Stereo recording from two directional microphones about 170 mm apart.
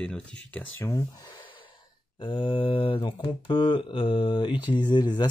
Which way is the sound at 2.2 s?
30° left (ahead or behind).